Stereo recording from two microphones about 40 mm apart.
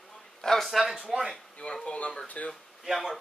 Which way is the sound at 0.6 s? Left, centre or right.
Centre.